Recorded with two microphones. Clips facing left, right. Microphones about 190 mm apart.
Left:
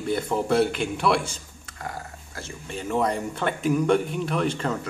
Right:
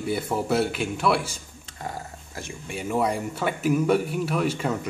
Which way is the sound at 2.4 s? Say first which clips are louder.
Right 1 dB; 15° right (ahead or behind).